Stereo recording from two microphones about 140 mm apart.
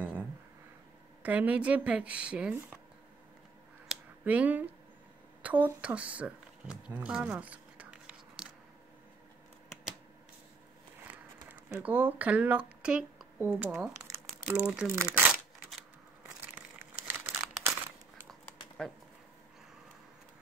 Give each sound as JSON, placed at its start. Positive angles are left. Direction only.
{"t": 0.0, "sound": "a sound", "side_deg": -10}
{"t": 1.2, "sound": "speech", "side_deg": -10}
{"t": 4.2, "sound": "speech", "side_deg": -10}
{"t": 11.4, "sound": "speech", "side_deg": -10}
{"t": 16.5, "sound": "crumpling", "side_deg": -15}